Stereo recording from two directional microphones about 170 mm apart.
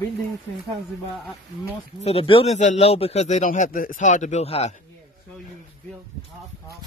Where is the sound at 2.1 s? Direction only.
35° left (ahead or behind).